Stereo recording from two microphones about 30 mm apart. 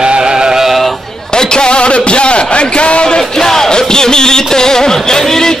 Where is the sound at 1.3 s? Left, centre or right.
Left.